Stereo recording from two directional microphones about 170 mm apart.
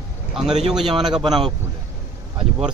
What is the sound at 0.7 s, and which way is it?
Speech, centre (ahead or behind).